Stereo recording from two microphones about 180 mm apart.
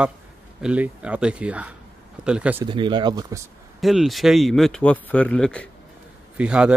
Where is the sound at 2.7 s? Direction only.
25° right (ahead or behind).